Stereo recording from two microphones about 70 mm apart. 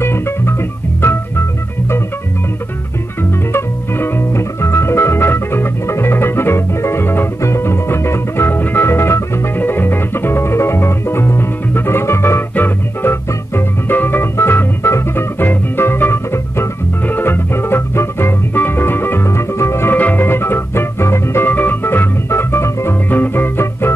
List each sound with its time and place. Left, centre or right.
0.0 s music: left
3.2 s music: left
13.3 s organ: left
17.0 s music: left
20.0 s music: left
23.0 s music: left